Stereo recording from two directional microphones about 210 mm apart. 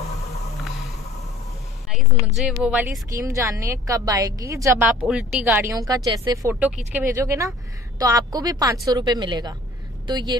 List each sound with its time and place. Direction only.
2.2 s a woman's voice: centre (ahead or behind); by 10.3 s 20° right (ahead or behind)